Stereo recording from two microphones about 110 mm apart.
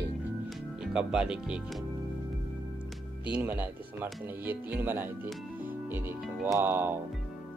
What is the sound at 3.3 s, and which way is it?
Speech, 15° right (ahead or behind).